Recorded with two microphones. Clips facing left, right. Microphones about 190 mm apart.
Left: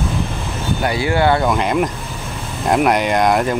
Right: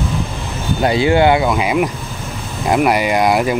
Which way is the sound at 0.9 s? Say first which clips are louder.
Right 4 dB; 20° right (ahead or behind).